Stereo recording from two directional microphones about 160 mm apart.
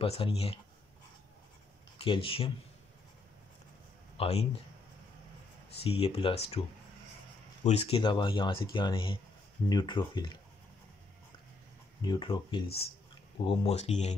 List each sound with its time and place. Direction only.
0.0 s speech: 35° left (ahead or behind)
2.0 s speech: 35° left (ahead or behind)
4.2 s speech: 40° left (ahead or behind)
5.9 s speech: 35° left (ahead or behind)
7.6 s speech: 40° left (ahead or behind)
12.0 s speech: 30° left (ahead or behind); by 14.1 s 45° left (ahead or behind)